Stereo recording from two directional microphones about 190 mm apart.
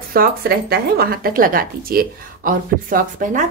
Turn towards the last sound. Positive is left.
turn(degrees=-40)  # may be behind; listen again after turning